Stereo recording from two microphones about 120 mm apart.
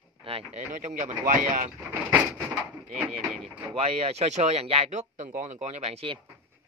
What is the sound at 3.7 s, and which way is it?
Speech, 60° right (ahead or behind).